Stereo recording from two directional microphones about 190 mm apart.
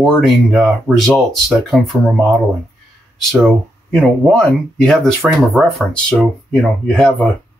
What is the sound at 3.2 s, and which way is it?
Speech, 5° left (ahead or behind).